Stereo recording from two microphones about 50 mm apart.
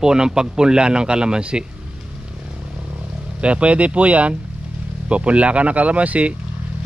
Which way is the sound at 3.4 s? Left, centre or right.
Right.